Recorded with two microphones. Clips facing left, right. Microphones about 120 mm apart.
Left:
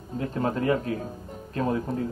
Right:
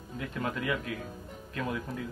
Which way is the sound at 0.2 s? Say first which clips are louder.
Left 7 dB; 35° left (ahead or behind).